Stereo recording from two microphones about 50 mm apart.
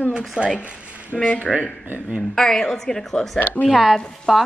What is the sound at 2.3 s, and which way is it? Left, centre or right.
A woman's voice, centre.